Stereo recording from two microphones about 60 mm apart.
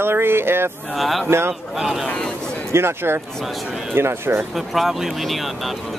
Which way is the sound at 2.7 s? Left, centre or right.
Right.